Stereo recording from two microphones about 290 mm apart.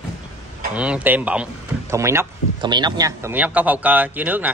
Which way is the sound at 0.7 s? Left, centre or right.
Centre.